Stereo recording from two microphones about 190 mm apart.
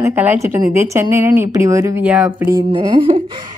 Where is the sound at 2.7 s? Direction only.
25° right (ahead or behind).